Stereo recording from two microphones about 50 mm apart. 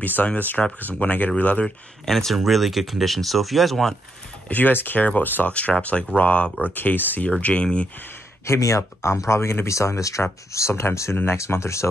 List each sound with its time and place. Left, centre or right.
0.0 s speech: left
2.0 s speech: centre
4.5 s speech: left
6.6 s speech: left
7.2 s speech: left
8.5 s speech: left
9.3 s speech: left
10.7 s speech: left
11.3 s speech: left